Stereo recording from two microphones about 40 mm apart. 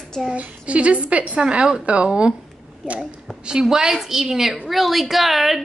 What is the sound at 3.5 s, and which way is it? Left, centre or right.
A woman's voice, centre.